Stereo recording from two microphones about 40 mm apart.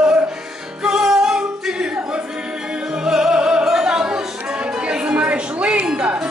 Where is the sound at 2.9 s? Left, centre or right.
Centre.